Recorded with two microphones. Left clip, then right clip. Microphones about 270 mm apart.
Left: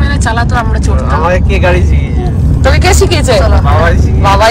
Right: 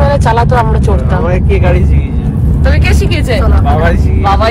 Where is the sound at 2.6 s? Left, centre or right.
Left.